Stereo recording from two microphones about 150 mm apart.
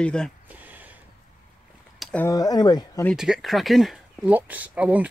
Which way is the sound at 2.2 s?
25° left (ahead or behind).